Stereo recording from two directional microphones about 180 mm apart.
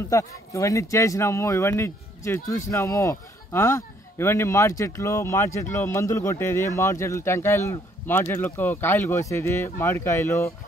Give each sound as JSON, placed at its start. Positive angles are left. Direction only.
{"t": 0.1, "sound": "speech", "side_deg": 15}